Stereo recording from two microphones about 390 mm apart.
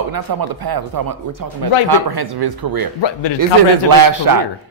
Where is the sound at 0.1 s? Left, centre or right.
Right.